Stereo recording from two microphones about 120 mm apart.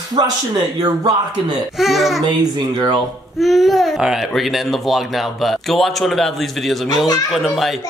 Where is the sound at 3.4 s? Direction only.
Centre (ahead or behind).